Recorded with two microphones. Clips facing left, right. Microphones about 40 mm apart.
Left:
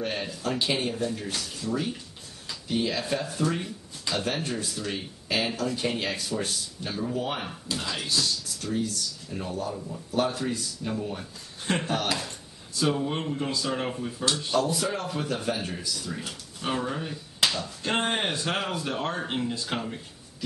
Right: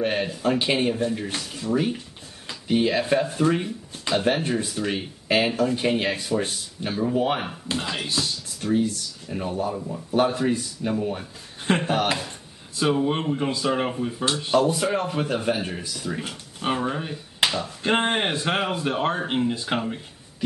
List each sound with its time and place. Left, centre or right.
0.0 s speech: right
14.4 s speech: right